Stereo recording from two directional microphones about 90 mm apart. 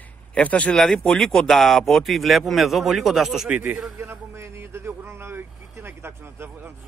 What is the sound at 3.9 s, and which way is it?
Speech, 30° right (ahead or behind).